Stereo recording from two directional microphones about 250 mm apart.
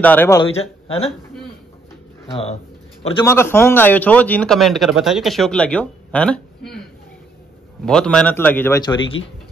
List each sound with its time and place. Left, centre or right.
0.0 s a man's voice: centre
0.8 s a man's voice: left
2.4 s a sound: left
3.3 s speech: centre
7.8 s a man's voice: centre